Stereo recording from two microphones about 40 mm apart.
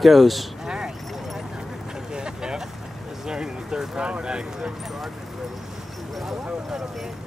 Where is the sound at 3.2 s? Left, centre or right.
Centre.